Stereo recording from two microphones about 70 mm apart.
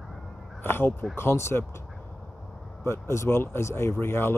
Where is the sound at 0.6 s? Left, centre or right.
Left.